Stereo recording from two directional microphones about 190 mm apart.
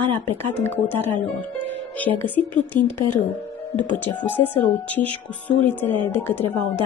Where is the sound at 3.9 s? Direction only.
10° left (ahead or behind).